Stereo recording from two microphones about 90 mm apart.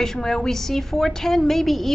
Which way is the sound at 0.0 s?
5° left (ahead or behind).